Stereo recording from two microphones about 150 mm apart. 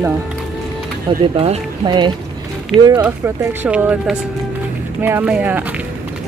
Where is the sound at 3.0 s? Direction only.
10° right (ahead or behind).